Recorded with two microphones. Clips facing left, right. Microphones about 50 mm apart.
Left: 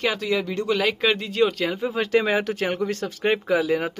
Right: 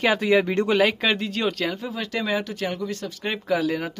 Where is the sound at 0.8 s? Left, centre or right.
Centre.